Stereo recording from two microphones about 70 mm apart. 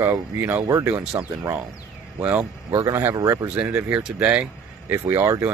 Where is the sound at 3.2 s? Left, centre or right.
Right.